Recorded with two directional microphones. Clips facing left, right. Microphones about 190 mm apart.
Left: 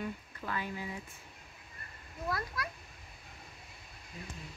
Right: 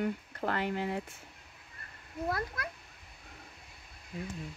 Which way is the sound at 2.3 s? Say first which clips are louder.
Right 1 dB; 50° right (ahead or behind).